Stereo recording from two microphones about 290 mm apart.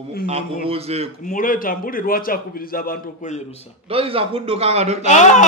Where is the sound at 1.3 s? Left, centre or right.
Left.